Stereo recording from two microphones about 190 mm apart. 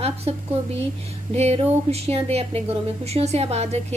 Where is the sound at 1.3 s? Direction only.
30° right (ahead or behind).